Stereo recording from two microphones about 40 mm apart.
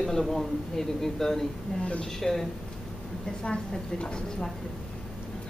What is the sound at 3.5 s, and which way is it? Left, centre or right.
A woman's voice, left.